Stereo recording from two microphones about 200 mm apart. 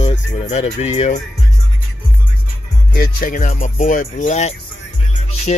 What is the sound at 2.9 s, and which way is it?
Speech, 45° left (ahead or behind).